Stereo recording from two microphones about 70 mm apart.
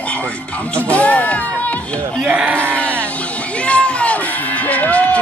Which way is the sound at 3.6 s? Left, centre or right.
Centre.